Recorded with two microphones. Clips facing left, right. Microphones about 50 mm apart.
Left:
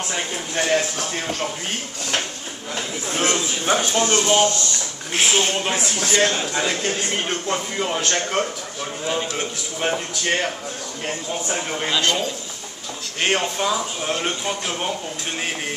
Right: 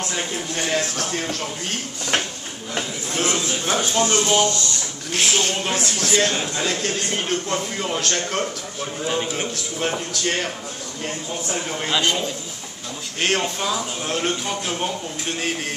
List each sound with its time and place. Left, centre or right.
0.1 s speech: centre
3.1 s speech: left
9.8 s speech: centre
11.9 s a man's voice: centre
13.2 s speech: centre